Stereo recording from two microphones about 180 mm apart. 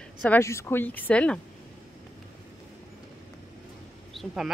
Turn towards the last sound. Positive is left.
turn(degrees=-5)  # may be behind; listen again after turning